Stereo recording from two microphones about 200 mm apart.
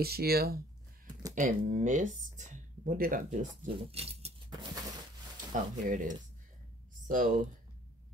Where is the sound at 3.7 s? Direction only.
30° right (ahead or behind).